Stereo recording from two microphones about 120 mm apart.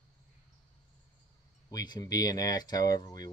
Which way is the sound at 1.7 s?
30° left (ahead or behind).